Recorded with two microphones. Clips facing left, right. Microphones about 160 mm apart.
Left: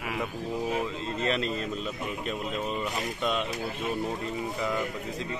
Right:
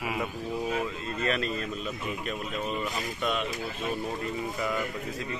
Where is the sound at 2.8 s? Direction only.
25° left (ahead or behind).